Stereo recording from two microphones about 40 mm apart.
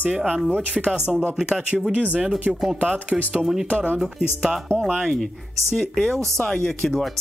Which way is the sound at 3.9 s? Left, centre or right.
Centre.